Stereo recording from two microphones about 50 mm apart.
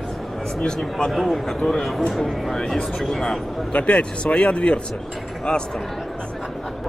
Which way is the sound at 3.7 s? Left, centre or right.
Left.